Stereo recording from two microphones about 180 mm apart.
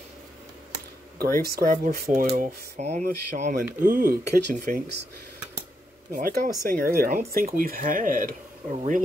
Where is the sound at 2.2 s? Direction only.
40° right (ahead or behind).